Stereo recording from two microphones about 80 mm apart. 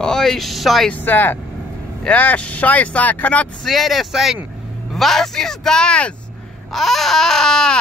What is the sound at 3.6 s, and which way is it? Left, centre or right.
Speech, centre.